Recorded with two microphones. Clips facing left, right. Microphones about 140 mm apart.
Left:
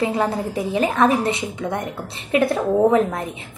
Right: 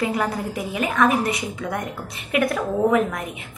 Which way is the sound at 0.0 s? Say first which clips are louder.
Left 3 dB; 25° left (ahead or behind).